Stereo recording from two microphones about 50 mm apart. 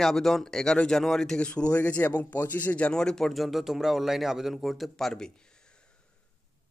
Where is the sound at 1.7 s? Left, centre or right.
Left.